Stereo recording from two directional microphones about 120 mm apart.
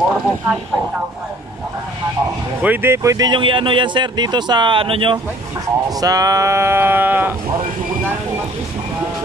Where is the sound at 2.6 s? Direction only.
15° right (ahead or behind); by 5.1 s 45° right (ahead or behind).